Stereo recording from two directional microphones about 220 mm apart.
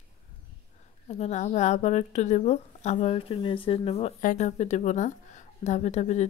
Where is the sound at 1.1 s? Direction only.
30° left (ahead or behind).